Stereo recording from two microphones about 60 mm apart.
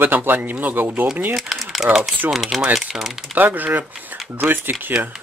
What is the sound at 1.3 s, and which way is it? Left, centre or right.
Speech, centre.